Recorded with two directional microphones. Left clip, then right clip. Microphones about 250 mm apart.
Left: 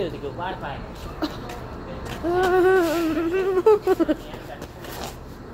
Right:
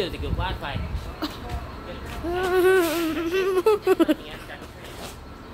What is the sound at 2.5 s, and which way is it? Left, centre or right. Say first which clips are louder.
Humming: right 1 dB; centre.